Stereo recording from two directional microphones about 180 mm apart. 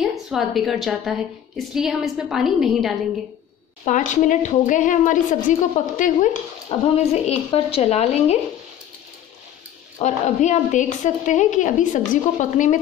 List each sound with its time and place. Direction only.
0.0 s a woman's voice: centre (ahead or behind)
3.8 s a woman's voice: 45° left (ahead or behind)
6.7 s speech: 35° left (ahead or behind)
9.9 s a woman's voice: 40° left (ahead or behind)